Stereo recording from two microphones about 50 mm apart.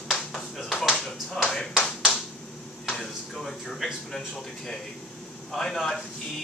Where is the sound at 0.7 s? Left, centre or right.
Centre.